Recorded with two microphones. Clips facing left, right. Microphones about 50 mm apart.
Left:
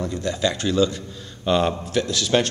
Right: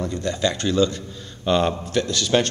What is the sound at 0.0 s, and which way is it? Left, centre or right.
A man's voice, centre.